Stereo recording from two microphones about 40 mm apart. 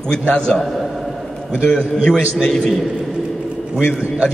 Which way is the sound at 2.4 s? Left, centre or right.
Centre.